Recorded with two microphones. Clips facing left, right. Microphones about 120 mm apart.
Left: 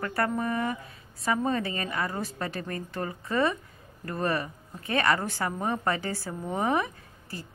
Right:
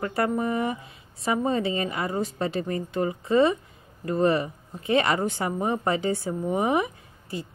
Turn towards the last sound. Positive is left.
turn(degrees=-20)  # may be behind; listen again after turning